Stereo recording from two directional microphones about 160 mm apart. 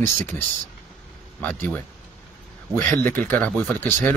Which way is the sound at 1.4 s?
10° left (ahead or behind).